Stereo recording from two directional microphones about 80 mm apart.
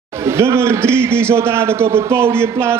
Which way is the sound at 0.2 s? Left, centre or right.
Right.